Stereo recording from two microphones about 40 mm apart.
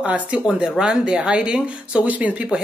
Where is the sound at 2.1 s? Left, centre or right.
Right.